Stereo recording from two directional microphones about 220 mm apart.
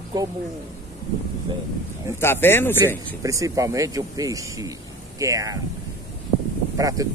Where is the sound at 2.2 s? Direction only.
10° left (ahead or behind).